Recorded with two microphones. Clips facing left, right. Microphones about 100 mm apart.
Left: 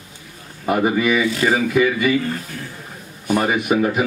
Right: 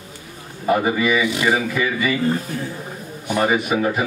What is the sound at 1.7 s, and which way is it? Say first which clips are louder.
Speech: left 4 dB; 15° left (ahead or behind).